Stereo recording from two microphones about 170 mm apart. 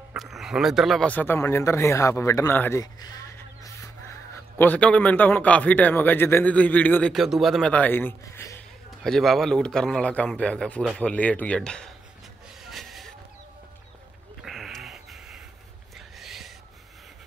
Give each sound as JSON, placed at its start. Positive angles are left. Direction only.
{"t": 0.1, "sound": "a man's voice", "side_deg": 0}
{"t": 3.6, "sound": "music", "side_deg": 15}
{"t": 4.6, "sound": "a man's voice", "side_deg": 10}
{"t": 9.0, "sound": "a man's voice", "side_deg": 0}
{"t": 12.6, "sound": "vehicle", "side_deg": 0}
{"t": 14.4, "sound": "a sound", "side_deg": 0}